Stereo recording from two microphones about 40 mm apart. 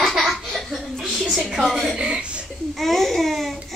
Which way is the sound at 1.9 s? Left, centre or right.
Right.